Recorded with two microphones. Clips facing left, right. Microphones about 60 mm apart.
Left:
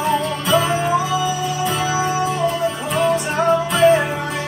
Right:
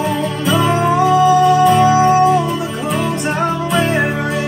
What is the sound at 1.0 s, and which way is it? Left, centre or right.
Music, right.